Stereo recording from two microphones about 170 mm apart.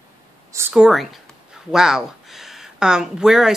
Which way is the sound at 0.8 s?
Centre (ahead or behind).